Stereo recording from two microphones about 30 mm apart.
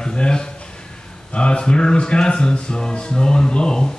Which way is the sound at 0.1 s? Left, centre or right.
Left.